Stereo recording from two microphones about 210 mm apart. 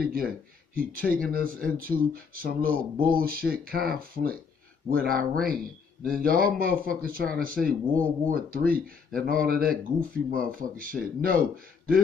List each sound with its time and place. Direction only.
0.0 s speech: 45° right (ahead or behind)